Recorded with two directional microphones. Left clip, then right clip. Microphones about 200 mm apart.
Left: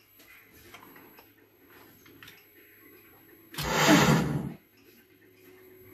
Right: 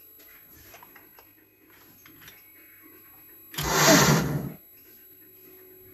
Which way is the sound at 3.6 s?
60° right (ahead or behind).